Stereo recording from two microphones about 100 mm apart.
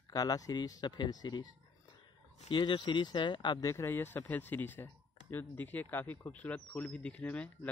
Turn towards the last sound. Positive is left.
turn(degrees=15)  # may be behind; listen again after turning